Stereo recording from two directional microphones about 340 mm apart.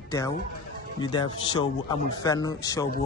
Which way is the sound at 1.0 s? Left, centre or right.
Centre.